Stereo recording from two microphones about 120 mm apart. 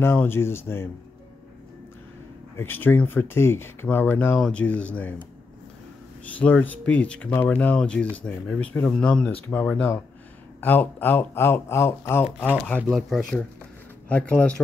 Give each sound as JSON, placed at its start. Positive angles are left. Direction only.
{"t": 0.0, "sound": "speech", "side_deg": 20}
{"t": 2.5, "sound": "speech", "side_deg": 20}
{"t": 6.2, "sound": "speech", "side_deg": 10}
{"t": 14.0, "sound": "speech", "side_deg": 10}